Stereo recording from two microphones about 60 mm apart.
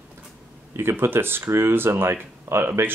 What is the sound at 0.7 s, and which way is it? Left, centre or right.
Speech, right.